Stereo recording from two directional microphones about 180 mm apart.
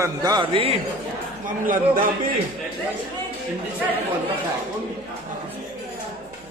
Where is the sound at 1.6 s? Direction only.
50° right (ahead or behind).